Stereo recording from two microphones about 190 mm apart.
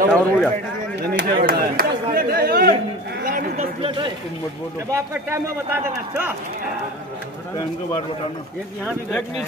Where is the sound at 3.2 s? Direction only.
45° right (ahead or behind).